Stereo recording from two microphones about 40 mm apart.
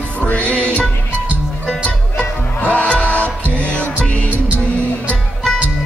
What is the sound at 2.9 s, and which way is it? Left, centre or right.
Music, left.